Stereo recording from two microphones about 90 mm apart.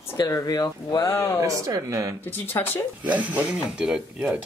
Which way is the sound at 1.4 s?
35° right (ahead or behind).